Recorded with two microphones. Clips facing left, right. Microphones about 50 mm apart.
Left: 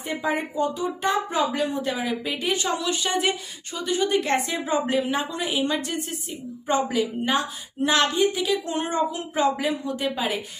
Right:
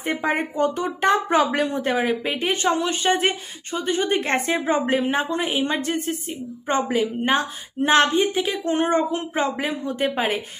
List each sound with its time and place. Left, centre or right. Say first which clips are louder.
0.0 s speech: right 3 dB; right